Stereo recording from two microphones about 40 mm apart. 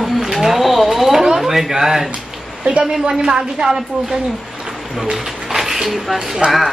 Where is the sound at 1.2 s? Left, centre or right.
Centre.